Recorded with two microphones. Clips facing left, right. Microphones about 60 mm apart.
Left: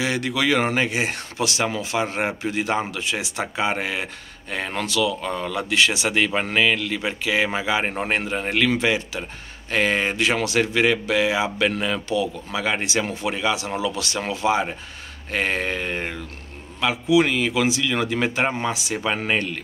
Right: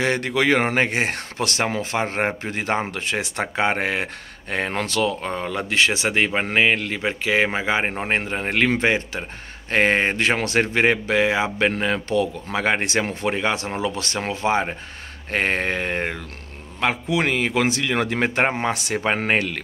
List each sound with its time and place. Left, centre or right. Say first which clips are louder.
0.0 s speech: right 2 dB; right
19.0 s speech: right 2 dB; right
19.3 s a man's voice: right 2 dB; right